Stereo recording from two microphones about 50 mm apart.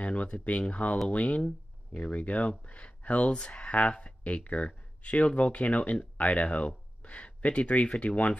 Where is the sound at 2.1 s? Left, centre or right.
Left.